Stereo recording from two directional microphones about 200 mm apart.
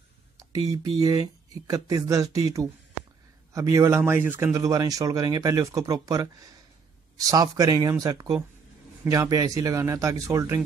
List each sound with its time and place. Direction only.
0.4 s speech: 20° right (ahead or behind)